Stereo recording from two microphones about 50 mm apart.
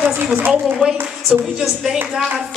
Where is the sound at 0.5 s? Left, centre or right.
Centre.